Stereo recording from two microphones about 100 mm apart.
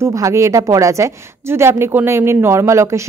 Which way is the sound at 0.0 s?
30° right (ahead or behind).